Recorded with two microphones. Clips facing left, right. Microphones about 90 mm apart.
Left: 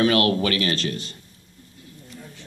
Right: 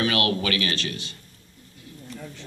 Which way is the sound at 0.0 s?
35° left (ahead or behind).